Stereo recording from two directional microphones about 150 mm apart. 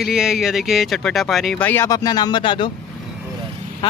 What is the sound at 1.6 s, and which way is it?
Speech, 15° left (ahead or behind).